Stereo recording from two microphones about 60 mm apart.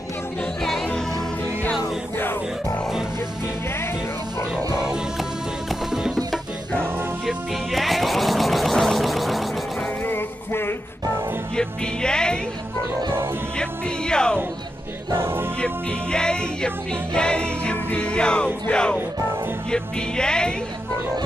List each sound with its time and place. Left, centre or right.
0.6 s music: centre
5.7 s music: centre
7.2 s music: centre
10.0 s music: left
11.5 s music: centre
13.6 s music: centre
15.1 s music: right
15.6 s music: centre